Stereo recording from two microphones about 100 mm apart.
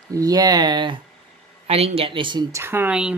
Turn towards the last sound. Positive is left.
turn(degrees=-10)  # may be behind; listen again after turning